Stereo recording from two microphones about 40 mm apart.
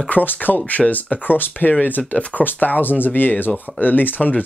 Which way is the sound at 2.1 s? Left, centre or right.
Left.